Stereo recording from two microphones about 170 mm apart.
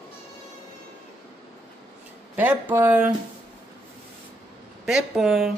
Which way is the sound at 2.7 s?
10° right (ahead or behind).